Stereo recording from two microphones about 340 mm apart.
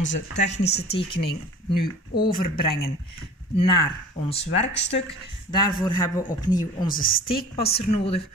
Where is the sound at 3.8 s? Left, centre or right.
Centre.